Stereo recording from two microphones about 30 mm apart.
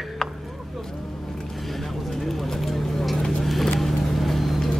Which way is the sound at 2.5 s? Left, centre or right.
Centre.